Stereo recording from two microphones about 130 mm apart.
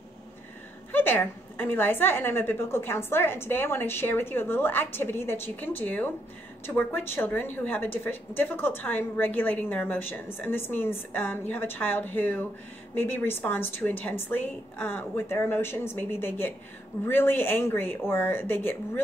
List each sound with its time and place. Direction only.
0.9 s a woman's voice: 15° left (ahead or behind)